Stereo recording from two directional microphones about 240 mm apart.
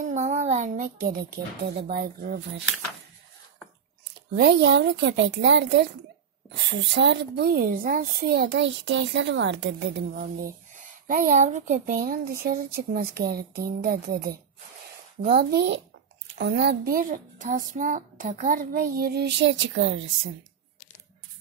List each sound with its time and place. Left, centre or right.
0.0 s a child's voice: right
4.4 s a woman's voice: right